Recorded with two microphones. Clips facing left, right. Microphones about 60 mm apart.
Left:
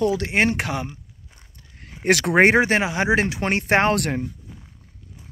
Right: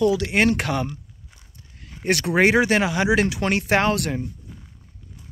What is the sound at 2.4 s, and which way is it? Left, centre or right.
Speech, left.